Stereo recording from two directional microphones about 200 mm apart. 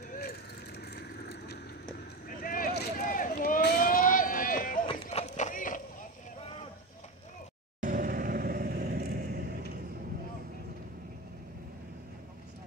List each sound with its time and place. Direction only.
0.1 s vehicle: 50° left (ahead or behind)
4.8 s clip-clop: 35° left (ahead or behind)
7.8 s vehicle: 45° right (ahead or behind)